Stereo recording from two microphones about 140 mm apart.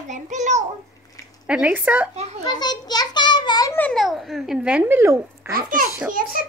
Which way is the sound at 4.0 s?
Centre (ahead or behind).